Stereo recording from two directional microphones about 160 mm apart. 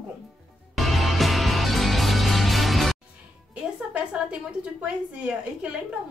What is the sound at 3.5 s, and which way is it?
A woman's voice, 5° right (ahead or behind).